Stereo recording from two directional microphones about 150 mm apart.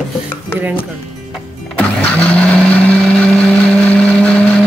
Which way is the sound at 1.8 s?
10° left (ahead or behind).